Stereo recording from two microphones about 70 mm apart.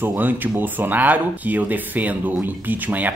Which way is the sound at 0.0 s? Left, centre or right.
Right.